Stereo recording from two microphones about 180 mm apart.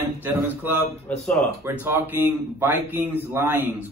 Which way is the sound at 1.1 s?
10° left (ahead or behind).